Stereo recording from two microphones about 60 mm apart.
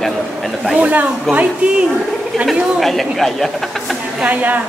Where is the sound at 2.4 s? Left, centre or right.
Centre.